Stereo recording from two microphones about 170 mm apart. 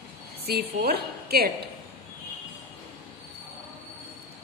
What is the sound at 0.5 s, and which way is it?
A man's voice, 70° right (ahead or behind).